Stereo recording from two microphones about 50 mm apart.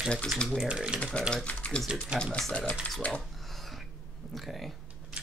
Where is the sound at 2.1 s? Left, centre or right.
Right.